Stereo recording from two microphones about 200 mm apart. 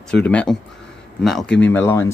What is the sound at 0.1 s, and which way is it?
Speech, 5° left (ahead or behind).